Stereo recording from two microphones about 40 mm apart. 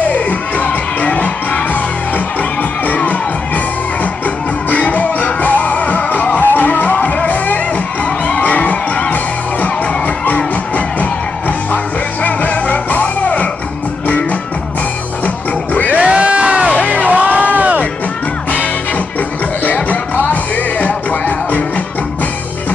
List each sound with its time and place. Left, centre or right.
0.1 s music: left
6.4 s music: left
15.2 s music: left
16.0 s crowd: right
17.1 s a sound: right
19.6 s music: left